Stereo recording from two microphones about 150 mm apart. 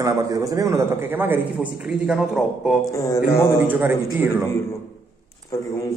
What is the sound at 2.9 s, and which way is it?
Speech, 20° left (ahead or behind).